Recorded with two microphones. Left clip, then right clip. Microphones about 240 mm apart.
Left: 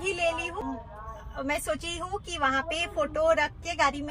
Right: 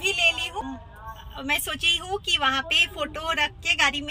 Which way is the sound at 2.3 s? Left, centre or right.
Right.